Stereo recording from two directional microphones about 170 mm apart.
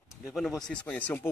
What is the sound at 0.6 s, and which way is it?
Speech, 10° left (ahead or behind).